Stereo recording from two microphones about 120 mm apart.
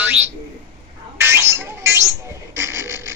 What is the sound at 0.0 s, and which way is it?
Bird, 15° right (ahead or behind).